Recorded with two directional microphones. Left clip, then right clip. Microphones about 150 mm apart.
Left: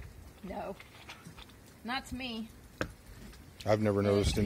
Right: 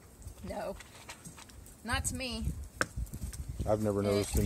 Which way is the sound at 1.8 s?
10° right (ahead or behind).